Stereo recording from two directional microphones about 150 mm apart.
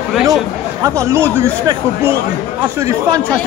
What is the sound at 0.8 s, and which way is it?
Speech, 20° right (ahead or behind).